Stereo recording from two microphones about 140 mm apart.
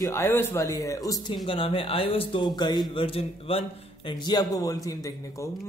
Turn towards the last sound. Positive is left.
turn(degrees=25)  # may be behind; listen again after turning